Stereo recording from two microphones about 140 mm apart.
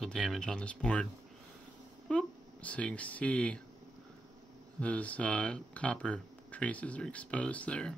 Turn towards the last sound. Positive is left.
turn(degrees=5)  # may be behind; listen again after turning